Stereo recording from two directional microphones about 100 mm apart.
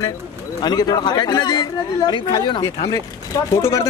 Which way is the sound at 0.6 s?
45° left (ahead or behind).